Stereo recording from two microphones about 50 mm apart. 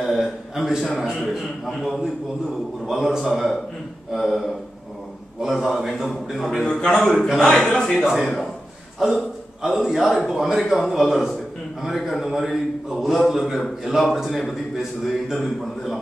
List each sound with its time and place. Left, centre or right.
0.0 s a man's voice: centre
6.6 s a man's voice: centre
7.6 s a man's voice: centre
9.0 s a man's voice: centre